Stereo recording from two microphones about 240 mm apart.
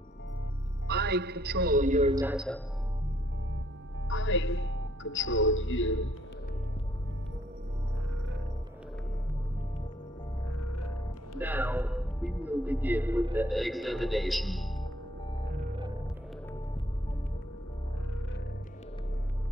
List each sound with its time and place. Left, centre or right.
0.8 s a man's voice: right
2.1 s a man's voice: centre
4.1 s a man's voice: left
10.5 s music: left
11.3 s a man's voice: centre
15.7 s hum: centre